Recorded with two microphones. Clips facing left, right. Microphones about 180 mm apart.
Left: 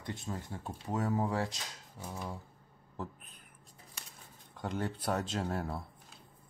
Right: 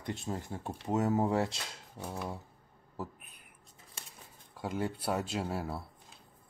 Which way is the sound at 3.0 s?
10° right (ahead or behind).